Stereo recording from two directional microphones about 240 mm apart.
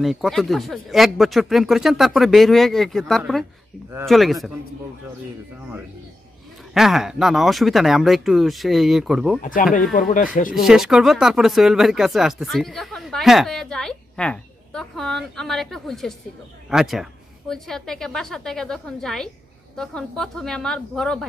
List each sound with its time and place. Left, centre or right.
0.0 s speech: centre
6.7 s speech: centre
9.4 s speech: left
10.5 s speech: centre